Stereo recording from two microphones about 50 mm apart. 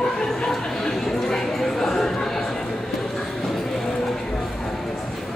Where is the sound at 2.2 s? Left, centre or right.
Centre.